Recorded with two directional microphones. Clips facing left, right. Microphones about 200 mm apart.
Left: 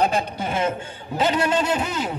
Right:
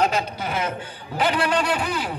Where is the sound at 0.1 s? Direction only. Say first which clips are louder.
Left 1 dB; 25° left (ahead or behind).